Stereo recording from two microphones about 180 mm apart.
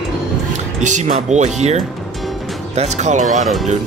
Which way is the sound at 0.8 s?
40° right (ahead or behind).